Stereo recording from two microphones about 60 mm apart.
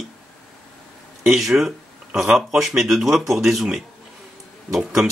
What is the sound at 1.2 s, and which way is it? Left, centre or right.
Speech, centre.